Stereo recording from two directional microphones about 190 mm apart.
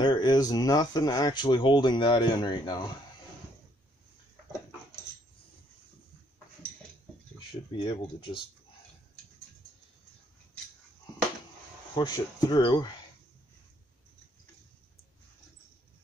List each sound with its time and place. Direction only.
0.0 s speech: 20° left (ahead or behind)
7.8 s speech: 25° left (ahead or behind)
11.9 s speech: 20° left (ahead or behind)